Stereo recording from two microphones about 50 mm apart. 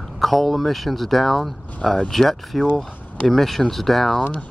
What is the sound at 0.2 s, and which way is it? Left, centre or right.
Speech, centre.